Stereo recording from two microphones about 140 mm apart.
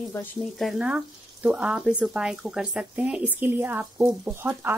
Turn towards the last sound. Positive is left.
turn(degrees=-15)  # may be behind; listen again after turning